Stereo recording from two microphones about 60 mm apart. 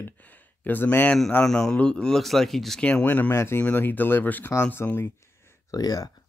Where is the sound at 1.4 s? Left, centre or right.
Centre.